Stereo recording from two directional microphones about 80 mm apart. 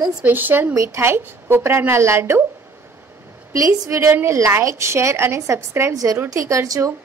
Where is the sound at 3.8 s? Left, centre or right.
Right.